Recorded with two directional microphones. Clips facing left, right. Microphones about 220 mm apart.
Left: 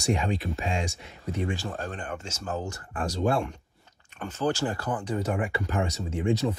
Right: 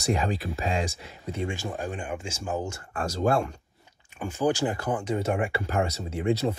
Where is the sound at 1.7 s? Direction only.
10° right (ahead or behind).